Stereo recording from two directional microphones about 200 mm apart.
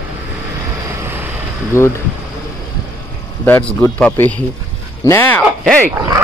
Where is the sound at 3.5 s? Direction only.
5° left (ahead or behind).